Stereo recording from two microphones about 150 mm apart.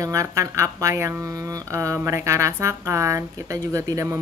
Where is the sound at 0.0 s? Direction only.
20° right (ahead or behind).